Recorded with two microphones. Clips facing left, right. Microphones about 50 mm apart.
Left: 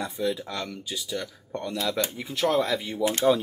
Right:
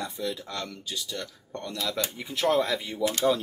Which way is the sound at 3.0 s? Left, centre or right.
Left.